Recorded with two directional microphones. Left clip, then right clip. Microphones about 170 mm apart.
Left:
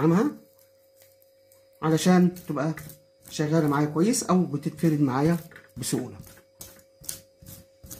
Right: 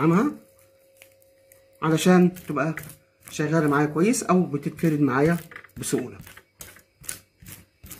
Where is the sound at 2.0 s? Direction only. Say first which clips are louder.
Right 3 dB; 10° left (ahead or behind).